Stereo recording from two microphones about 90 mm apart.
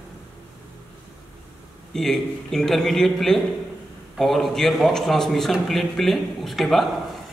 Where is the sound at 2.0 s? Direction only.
5° left (ahead or behind).